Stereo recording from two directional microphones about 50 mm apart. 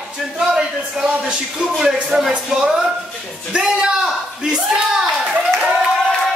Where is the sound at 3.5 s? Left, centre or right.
Centre.